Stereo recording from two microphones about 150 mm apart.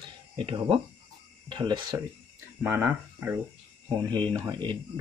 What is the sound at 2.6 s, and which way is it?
Speech, 15° right (ahead or behind).